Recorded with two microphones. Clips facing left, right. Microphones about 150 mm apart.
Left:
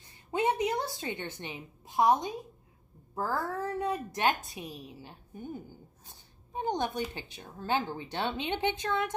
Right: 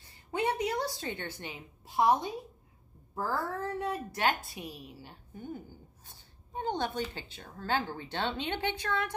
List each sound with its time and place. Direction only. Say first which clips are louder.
0.3 s a woman's voice: left 2 dB; 20° left (ahead or behind)
6.0 s a sound: left 1 dB; 15° left (ahead or behind)
7.0 s speech: left 1 dB; 15° left (ahead or behind)